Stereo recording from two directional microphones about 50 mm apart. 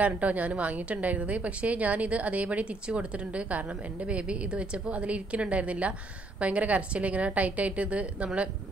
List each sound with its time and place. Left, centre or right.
0.0 s a woman's voice: right